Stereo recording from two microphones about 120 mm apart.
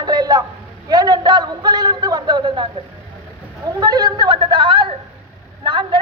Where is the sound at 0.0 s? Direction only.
35° right (ahead or behind).